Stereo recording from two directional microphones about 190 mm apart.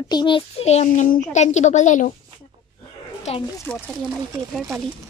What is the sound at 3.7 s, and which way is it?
Speech, 10° left (ahead or behind).